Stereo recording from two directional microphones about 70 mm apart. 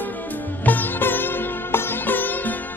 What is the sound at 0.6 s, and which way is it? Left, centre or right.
Music, left.